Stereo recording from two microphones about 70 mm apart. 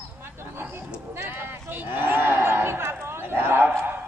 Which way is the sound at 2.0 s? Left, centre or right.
Right.